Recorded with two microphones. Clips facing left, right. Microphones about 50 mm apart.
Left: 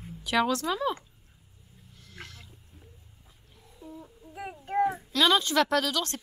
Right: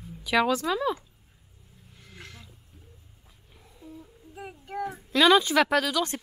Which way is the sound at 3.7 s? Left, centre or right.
Centre.